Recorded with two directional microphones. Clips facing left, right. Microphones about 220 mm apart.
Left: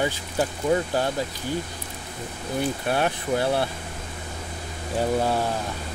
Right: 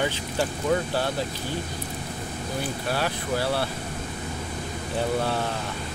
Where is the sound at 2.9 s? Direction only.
20° left (ahead or behind).